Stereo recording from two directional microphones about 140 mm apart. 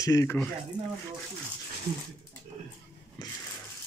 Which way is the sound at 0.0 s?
25° left (ahead or behind).